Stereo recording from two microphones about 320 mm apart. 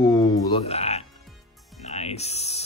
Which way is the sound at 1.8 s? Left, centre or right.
Centre.